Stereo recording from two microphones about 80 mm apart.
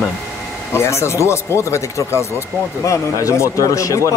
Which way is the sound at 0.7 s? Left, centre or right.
Left.